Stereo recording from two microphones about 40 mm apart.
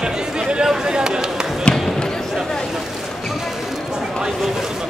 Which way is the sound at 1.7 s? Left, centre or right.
Left.